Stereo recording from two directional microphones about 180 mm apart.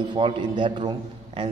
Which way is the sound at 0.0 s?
25° right (ahead or behind).